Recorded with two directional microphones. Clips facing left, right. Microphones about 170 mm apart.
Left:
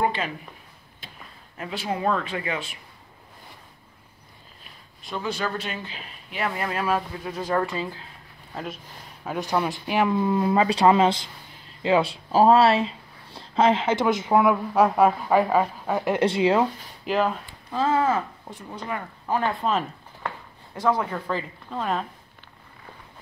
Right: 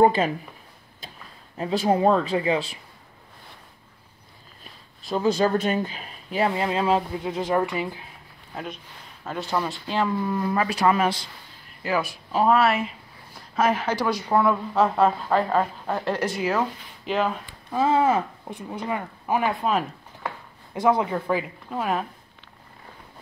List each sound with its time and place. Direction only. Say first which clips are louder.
0.0 s speech: right 7 dB; 40° right (ahead or behind)
1.6 s speech: right 7 dB; 35° right (ahead or behind)
5.0 s speech: right 7 dB; 35° right (ahead or behind)
6.4 s speech: right 4 dB; 25° right (ahead or behind)
9.2 s speech: left 2 dB; 15° left (ahead or behind)
16.2 s speech: left 8 dB; 25° left (ahead or behind)
17.0 s speech: left 1 dB; centre (ahead or behind)
17.6 s speech: right 2 dB; 10° right (ahead or behind)